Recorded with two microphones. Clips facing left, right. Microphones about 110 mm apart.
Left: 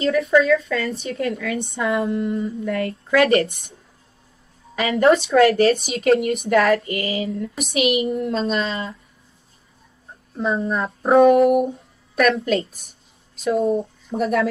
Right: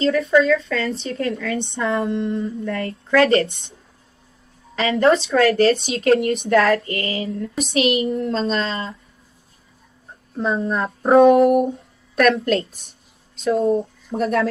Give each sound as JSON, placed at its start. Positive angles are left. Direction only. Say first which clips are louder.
{"t": 0.0, "sound": "speech", "louder": "right 1 dB", "side_deg": 0}
{"t": 3.4, "sound": "speech", "louder": "even", "side_deg": -25}
{"t": 4.7, "sound": "speech", "louder": "even", "side_deg": 0}
{"t": 10.3, "sound": "speech", "louder": "right 1 dB", "side_deg": 0}